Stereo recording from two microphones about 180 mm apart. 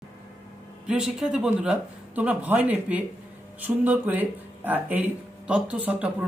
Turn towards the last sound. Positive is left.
turn(degrees=-10)  # may be behind; listen again after turning